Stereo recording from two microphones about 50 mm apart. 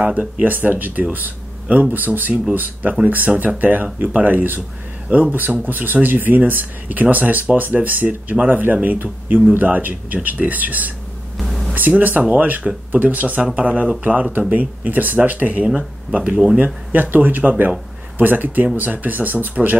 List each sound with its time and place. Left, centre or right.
0.0 s speech: centre
0.4 s speech: right
11.3 s a sound: centre
11.7 s speech: right
16.2 s speech: centre
16.5 s speech: right